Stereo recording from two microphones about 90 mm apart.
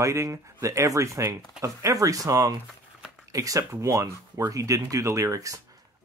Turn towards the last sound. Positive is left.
turn(degrees=-35)  # may be behind; listen again after turning